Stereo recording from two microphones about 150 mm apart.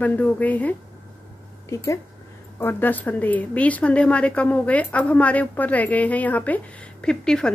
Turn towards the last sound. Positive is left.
turn(degrees=5)  # may be behind; listen again after turning